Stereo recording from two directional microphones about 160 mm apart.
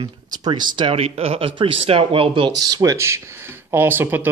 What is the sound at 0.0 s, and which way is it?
Speech, 25° right (ahead or behind).